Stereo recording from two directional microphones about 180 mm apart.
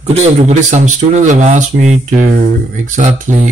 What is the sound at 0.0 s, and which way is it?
Speech, 35° right (ahead or behind).